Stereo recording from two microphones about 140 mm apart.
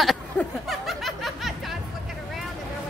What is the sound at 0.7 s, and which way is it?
Snicker, centre (ahead or behind).